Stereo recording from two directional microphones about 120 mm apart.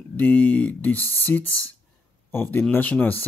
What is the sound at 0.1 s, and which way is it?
A man's voice, 15° left (ahead or behind).